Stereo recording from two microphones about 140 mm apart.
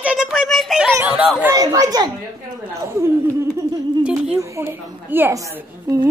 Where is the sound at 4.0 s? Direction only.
5° right (ahead or behind).